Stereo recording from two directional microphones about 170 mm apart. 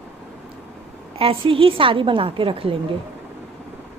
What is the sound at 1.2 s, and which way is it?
A woman's voice, 30° right (ahead or behind).